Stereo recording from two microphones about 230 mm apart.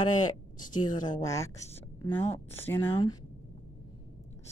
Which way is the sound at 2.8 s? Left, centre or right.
Left.